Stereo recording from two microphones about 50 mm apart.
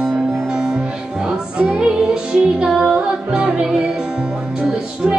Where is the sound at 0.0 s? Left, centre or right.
Centre.